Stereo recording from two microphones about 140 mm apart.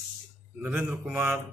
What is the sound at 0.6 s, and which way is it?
Speech, 15° right (ahead or behind).